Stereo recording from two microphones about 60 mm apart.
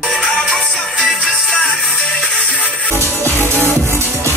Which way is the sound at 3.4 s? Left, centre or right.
Right.